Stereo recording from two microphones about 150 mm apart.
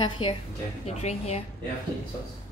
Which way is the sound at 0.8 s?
45° left (ahead or behind).